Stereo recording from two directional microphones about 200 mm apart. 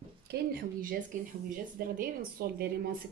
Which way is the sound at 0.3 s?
45° right (ahead or behind).